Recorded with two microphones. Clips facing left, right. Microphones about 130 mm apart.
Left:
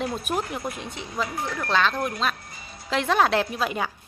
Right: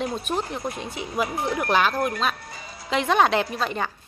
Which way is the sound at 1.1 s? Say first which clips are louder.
Right 4 dB; 15° right (ahead or behind).